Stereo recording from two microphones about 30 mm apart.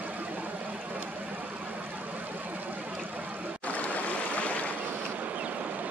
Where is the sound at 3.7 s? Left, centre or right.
Left.